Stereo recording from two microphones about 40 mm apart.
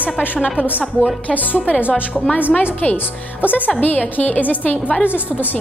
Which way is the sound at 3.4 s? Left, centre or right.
Left.